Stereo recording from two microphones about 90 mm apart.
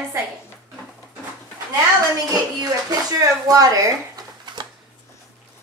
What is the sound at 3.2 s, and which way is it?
Speech, 40° right (ahead or behind).